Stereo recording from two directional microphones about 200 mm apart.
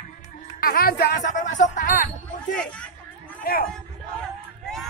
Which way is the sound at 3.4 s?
45° left (ahead or behind).